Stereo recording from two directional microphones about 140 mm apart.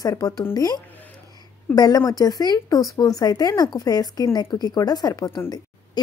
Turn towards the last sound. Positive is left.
turn(degrees=25)  # may be behind; listen again after turning